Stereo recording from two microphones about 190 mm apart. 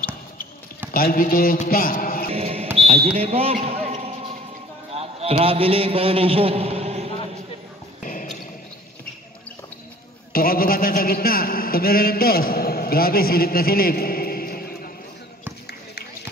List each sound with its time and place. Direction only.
0.9 s a man's voice: 50° left (ahead or behind)
2.3 s a sound: 30° right (ahead or behind)
4.9 s a man's voice: 30° right (ahead or behind)
8.0 s basketball bounce: 40° left (ahead or behind)
10.3 s a man's voice: 50° left (ahead or behind)